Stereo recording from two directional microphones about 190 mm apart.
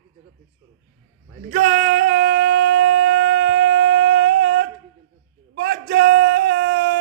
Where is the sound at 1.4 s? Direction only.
45° right (ahead or behind).